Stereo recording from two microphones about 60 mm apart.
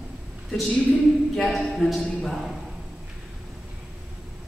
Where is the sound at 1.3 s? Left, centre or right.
Centre.